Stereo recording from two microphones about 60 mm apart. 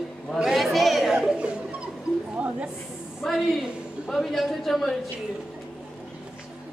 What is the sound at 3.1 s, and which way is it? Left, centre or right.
A man's voice, centre.